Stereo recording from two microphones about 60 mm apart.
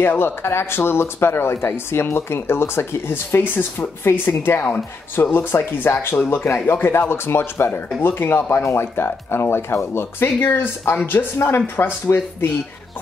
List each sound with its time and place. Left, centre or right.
0.0 s speech: left